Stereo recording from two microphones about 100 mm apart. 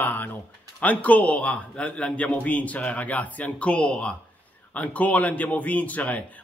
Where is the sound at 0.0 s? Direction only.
20° left (ahead or behind).